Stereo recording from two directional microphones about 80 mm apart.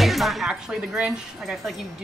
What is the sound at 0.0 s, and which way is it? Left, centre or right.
Music, centre.